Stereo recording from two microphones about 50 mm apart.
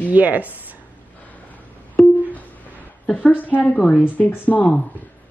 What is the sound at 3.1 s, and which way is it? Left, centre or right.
Speech, left.